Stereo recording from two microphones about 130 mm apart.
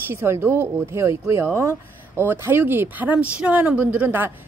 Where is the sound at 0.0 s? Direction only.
15° right (ahead or behind).